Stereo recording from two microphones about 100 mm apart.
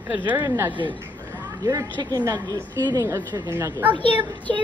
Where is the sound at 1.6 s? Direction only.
40° right (ahead or behind).